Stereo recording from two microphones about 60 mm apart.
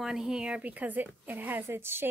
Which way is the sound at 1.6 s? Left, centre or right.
Right.